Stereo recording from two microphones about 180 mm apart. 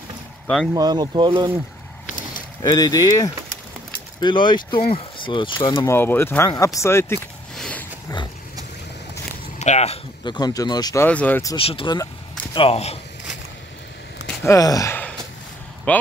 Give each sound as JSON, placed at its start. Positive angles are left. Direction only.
{"t": 0.7, "sound": "speech", "side_deg": -20}
{"t": 2.6, "sound": "speech", "side_deg": 20}
{"t": 5.9, "sound": "speech", "side_deg": 15}
{"t": 7.5, "sound": "a sound", "side_deg": 5}
{"t": 9.6, "sound": "speech", "side_deg": 40}
{"t": 11.1, "sound": "speech", "side_deg": 10}
{"t": 11.5, "sound": "speech", "side_deg": 30}
{"t": 14.2, "sound": "a sound", "side_deg": 15}
{"t": 15.9, "sound": "speech", "side_deg": 10}